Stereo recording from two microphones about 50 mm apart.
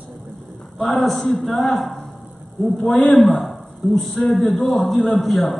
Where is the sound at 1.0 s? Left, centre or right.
Centre.